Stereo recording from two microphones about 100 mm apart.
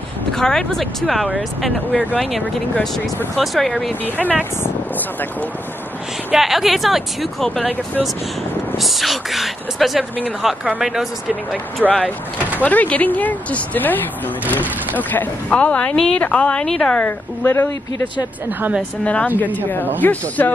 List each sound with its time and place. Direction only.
0.3 s speech: 5° left (ahead or behind)
4.0 s speech: 15° left (ahead or behind)
6.3 s speech: 5° right (ahead or behind)
8.7 s speech: centre (ahead or behind)
11.9 s speech: 10° left (ahead or behind)
15.0 s speech: 15° left (ahead or behind)
18.6 s speech: 10° right (ahead or behind)
19.0 s speech: 15° left (ahead or behind)